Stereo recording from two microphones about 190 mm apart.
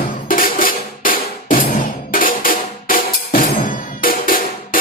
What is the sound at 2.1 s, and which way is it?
Drum, 50° left (ahead or behind).